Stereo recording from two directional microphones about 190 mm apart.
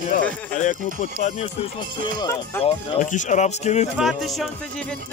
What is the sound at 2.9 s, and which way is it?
Speech, 40° left (ahead or behind).